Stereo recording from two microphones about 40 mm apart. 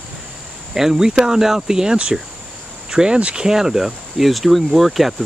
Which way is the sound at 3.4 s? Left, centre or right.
Centre.